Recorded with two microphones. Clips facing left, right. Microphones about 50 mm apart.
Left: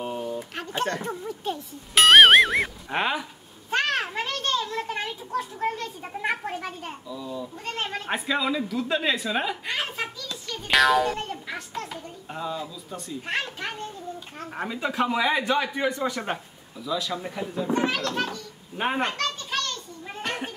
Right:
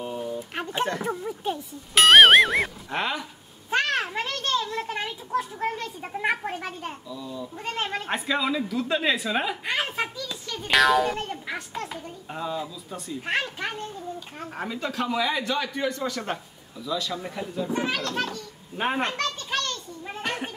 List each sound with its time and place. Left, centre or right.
0.6 s a sound: centre
0.9 s speech: centre
2.0 s speech: centre
2.9 s a man's voice: centre
3.7 s a child's voice: centre
7.1 s a man's voice: centre
7.6 s a child's voice: centre
9.7 s a sound: centre
10.5 s a child's voice: centre
14.5 s a man's voice: centre
14.9 s a man's voice: centre
19.5 s a sound: centre